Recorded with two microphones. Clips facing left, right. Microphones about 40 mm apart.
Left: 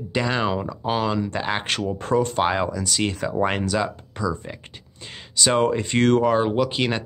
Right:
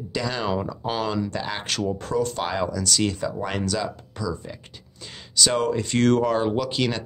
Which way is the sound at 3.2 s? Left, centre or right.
Left.